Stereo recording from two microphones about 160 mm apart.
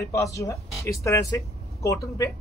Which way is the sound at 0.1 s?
20° left (ahead or behind).